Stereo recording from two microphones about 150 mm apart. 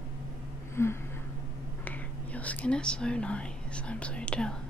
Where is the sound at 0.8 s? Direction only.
15° left (ahead or behind).